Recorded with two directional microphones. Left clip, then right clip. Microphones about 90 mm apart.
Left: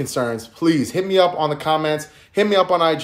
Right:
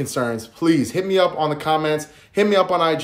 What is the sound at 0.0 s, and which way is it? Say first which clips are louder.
Speech: left 1 dB; 20° right (ahead or behind).